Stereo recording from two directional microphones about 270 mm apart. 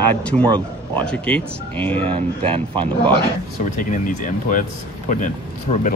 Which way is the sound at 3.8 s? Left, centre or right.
Left.